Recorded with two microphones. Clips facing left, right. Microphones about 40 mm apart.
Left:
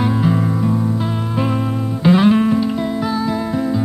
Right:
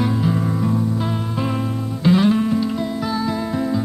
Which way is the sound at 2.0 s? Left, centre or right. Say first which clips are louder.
Left 3 dB; left.